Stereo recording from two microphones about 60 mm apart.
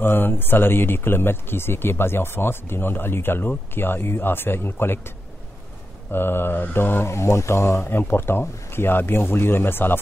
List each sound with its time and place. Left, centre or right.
0.0 s speech: left
6.1 s speech: left
7.1 s mantra: left
7.8 s speech: left